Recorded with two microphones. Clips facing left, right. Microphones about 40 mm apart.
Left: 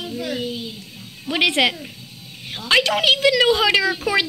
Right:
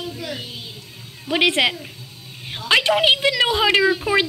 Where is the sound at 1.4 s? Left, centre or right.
Right.